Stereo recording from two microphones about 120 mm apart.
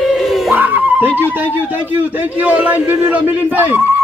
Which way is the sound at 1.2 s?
15° right (ahead or behind).